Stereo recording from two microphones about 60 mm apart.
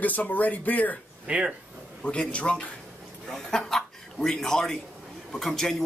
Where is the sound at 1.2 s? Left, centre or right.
Centre.